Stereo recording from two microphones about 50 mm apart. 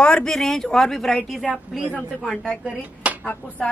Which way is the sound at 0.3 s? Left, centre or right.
Centre.